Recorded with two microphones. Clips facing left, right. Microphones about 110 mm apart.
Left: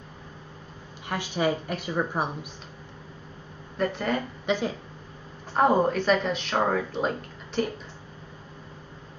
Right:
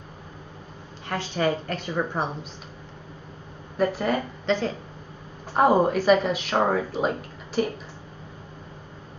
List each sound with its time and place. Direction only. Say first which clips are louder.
1.0 s a woman's voice: right 1 dB; 10° left (ahead or behind)
3.7 s speech: right 3 dB; 5° right (ahead or behind)
4.5 s a woman's voice: right 2 dB; 10° left (ahead or behind)
5.5 s speech: right 2 dB; 5° right (ahead or behind)